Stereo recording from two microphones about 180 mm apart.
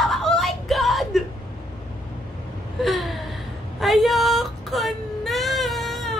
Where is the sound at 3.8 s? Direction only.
Centre (ahead or behind).